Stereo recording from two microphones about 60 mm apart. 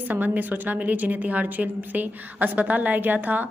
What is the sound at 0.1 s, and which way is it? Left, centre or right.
A woman's voice, right.